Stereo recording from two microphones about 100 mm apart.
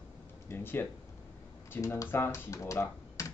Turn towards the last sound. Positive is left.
turn(degrees=30)  # may be behind; listen again after turning